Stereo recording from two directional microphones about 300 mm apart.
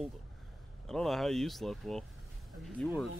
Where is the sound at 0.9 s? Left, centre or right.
Centre.